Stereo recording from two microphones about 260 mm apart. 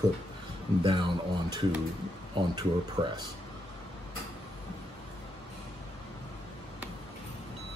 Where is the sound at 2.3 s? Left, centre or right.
Centre.